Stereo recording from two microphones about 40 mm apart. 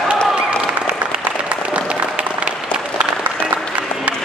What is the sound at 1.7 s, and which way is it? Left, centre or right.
Applause, right.